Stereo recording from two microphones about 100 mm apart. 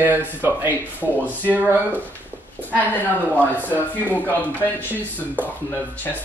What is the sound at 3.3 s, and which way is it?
Speech, 15° left (ahead or behind).